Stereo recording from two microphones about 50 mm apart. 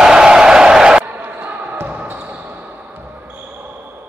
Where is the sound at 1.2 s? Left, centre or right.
Right.